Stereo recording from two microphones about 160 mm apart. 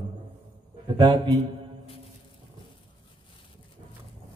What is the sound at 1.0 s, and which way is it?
Speech, 30° right (ahead or behind).